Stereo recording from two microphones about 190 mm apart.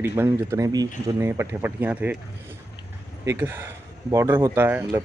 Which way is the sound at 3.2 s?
10° right (ahead or behind).